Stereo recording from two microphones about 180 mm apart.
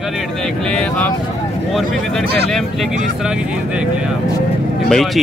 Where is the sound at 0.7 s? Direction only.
5° left (ahead or behind).